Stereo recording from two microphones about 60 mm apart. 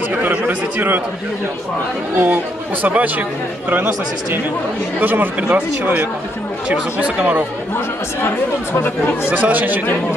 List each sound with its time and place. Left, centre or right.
0.1 s speech: right
2.1 s speech: right
8.8 s speech: left
9.3 s speech: right